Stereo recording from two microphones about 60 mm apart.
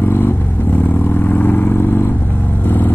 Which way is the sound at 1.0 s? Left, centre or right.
Left.